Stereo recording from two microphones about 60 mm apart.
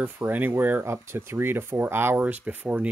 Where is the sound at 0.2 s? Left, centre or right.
Right.